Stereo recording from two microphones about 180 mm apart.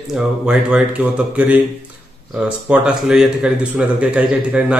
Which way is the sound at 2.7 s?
5° right (ahead or behind).